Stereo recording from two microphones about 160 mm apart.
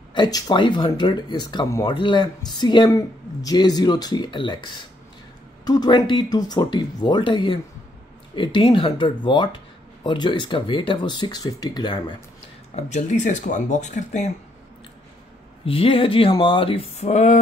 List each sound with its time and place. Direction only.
0.1 s speech: 25° left (ahead or behind)
5.7 s speech: 25° left (ahead or behind)
12.7 s speech: 45° left (ahead or behind)
15.6 s speech: 35° left (ahead or behind)